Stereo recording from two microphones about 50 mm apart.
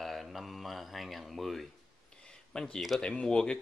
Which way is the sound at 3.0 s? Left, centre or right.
Left.